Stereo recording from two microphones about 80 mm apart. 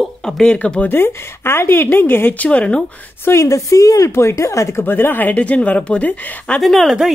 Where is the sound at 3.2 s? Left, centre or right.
Left.